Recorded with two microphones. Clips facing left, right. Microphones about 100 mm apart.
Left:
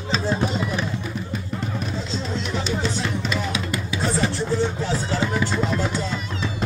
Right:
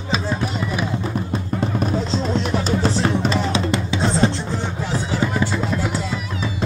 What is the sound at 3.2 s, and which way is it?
Music, 30° right (ahead or behind).